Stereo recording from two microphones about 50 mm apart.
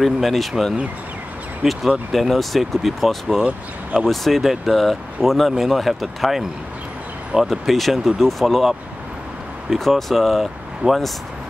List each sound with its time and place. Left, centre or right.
0.0 s speech: centre
1.6 s speech: centre
7.6 s speech: centre
9.8 s speech: centre
10.8 s speech: right